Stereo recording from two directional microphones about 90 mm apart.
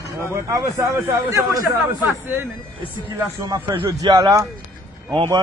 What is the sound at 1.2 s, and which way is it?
Speech, 40° right (ahead or behind).